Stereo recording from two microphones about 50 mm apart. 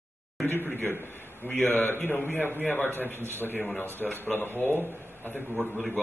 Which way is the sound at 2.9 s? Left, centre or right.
Right.